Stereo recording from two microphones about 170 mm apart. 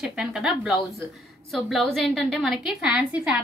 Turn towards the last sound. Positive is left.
turn(degrees=-5)  # may be behind; listen again after turning